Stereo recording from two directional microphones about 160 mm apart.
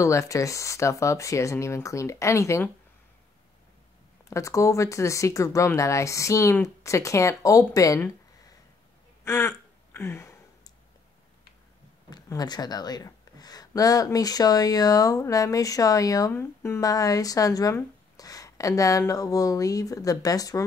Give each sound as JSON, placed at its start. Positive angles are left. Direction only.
{"t": 0.0, "sound": "speech", "side_deg": 20}
{"t": 4.3, "sound": "speech", "side_deg": 20}
{"t": 9.2, "sound": "a sound", "side_deg": 15}
{"t": 12.1, "sound": "speech", "side_deg": 25}